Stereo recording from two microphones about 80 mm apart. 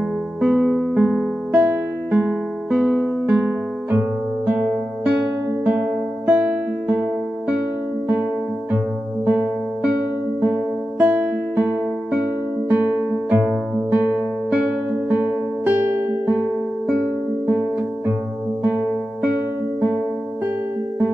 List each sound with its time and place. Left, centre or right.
0.4 s music: centre
1.6 s music: centre
2.7 s music: centre
4.5 s music: centre
8.7 s music: right
10.4 s music: centre
18.6 s music: right